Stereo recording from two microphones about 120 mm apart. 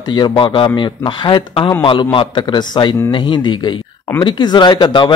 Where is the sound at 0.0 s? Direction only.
40° left (ahead or behind).